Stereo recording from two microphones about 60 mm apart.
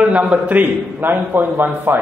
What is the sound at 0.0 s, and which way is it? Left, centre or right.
A man's voice, right.